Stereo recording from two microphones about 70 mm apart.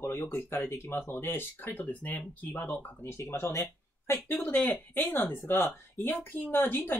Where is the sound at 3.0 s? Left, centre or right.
Left.